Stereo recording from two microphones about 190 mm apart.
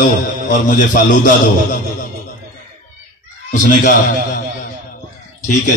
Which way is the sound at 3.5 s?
45° left (ahead or behind).